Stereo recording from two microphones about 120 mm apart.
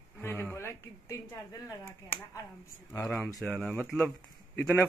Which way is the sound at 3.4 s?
5° left (ahead or behind).